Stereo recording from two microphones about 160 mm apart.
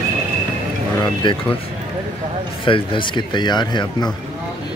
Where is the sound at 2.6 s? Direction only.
30° left (ahead or behind).